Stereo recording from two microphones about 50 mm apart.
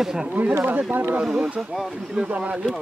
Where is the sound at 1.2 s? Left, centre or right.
Centre.